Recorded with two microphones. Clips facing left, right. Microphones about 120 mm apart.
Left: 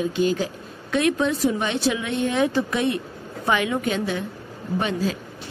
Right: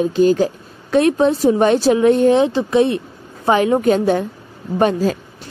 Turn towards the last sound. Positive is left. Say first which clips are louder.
# right 8 dB
turn(degrees=-45)  # may be behind; listen again after turning